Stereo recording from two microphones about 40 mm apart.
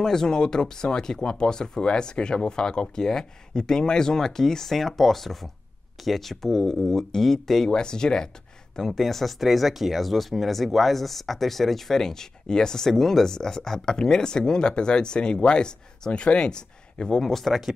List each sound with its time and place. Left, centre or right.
0.0 s speech: centre
8.7 s speech: centre
17.2 s speech: centre
17.5 s speech: centre